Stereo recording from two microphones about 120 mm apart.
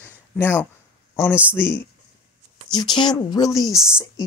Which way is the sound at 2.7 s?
35° left (ahead or behind).